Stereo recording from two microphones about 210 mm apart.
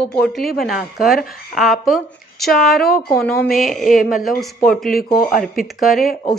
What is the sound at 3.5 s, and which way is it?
Speech, 40° left (ahead or behind).